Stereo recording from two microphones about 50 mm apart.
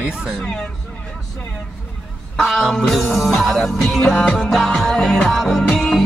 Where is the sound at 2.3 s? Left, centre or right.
Centre.